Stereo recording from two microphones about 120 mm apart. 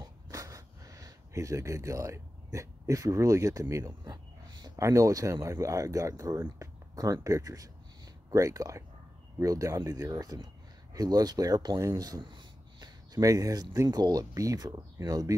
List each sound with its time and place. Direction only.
0.0 s a sound: 30° right (ahead or behind)
4.7 s speech: 25° right (ahead or behind)
12.2 s speech: 40° right (ahead or behind)